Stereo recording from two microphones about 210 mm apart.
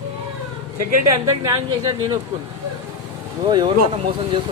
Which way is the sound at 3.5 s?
25° right (ahead or behind).